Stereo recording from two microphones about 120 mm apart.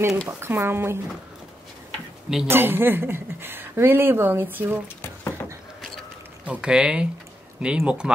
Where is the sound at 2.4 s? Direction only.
20° right (ahead or behind).